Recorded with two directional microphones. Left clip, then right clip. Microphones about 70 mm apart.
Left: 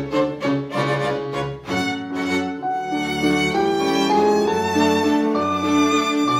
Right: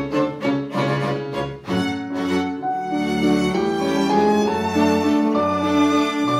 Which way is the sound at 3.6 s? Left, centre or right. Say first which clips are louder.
Left 2 dB; left.